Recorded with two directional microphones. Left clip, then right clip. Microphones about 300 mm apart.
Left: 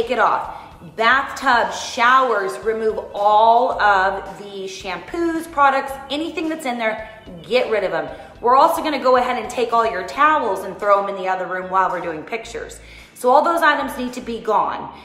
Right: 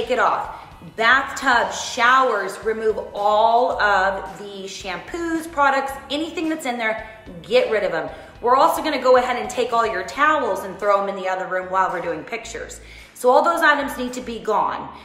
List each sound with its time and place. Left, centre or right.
0.1 s a woman's voice: centre